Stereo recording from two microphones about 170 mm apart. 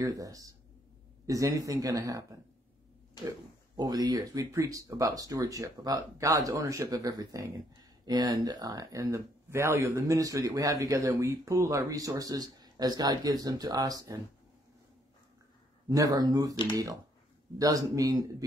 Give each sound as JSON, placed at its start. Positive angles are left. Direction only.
{"t": 0.0, "sound": "speech", "side_deg": -20}
{"t": 3.3, "sound": "speech", "side_deg": -25}
{"t": 15.9, "sound": "speech", "side_deg": -20}